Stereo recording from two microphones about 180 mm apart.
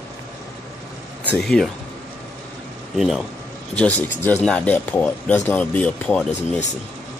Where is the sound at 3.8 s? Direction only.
10° left (ahead or behind).